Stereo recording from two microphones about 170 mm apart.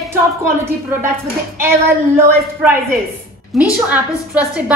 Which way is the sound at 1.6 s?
15° right (ahead or behind).